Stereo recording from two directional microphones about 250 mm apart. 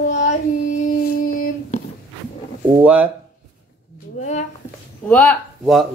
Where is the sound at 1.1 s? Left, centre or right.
Left.